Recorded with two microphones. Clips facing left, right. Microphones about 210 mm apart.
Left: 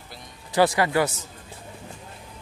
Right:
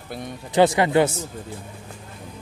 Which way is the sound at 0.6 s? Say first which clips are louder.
Right 4 dB; 20° right (ahead or behind).